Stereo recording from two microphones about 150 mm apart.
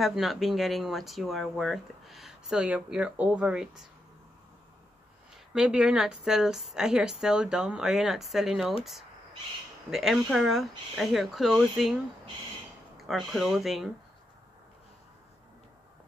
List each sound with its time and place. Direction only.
0.0 s speech: centre (ahead or behind)
5.3 s speech: 5° right (ahead or behind)
9.8 s speech: centre (ahead or behind)